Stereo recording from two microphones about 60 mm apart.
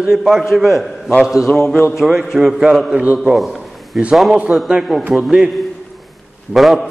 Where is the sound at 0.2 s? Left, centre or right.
Centre.